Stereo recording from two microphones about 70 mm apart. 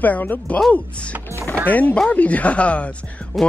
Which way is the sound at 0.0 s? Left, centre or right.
Left.